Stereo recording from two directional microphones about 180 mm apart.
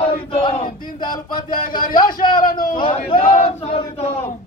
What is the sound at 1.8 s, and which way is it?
Speech, 50° left (ahead or behind).